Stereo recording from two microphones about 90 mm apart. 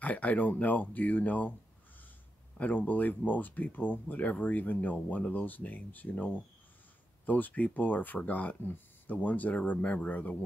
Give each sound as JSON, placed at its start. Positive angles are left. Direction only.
{"t": 0.0, "sound": "speech", "side_deg": 15}
{"t": 2.5, "sound": "speech", "side_deg": 20}